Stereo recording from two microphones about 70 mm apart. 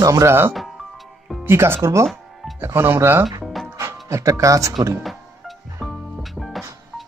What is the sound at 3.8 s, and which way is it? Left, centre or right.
Music, right.